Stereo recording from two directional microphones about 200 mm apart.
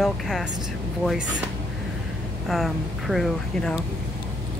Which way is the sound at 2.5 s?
Centre (ahead or behind).